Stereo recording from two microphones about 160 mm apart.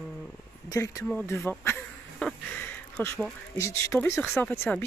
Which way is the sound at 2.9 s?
10° left (ahead or behind).